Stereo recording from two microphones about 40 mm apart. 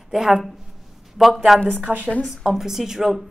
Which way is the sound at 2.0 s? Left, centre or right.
Left.